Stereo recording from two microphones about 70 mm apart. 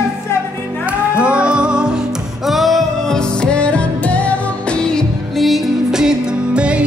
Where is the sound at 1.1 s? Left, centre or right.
Centre.